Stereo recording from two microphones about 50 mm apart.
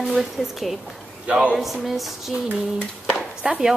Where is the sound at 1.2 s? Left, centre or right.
Right.